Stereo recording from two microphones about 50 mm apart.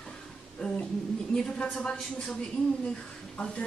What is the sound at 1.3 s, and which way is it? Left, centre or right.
Speech, centre.